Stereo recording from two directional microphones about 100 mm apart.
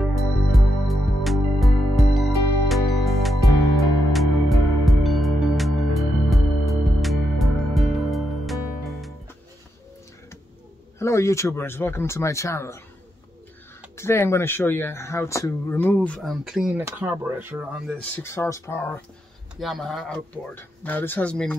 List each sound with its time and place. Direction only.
0.0 s music: centre (ahead or behind)
11.0 s speech: 30° left (ahead or behind)
13.9 s speech: 25° left (ahead or behind)
15.8 s speech: 15° left (ahead or behind)
16.2 s speech: centre (ahead or behind)
16.7 s speech: 20° right (ahead or behind)
18.1 s speech: 25° left (ahead or behind)
19.5 s speech: centre (ahead or behind)
20.5 s speech: 20° left (ahead or behind)